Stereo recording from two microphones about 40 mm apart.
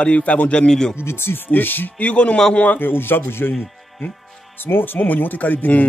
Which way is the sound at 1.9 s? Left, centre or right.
Left.